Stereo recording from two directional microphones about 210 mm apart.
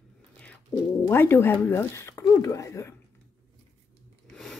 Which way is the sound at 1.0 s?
10° left (ahead or behind).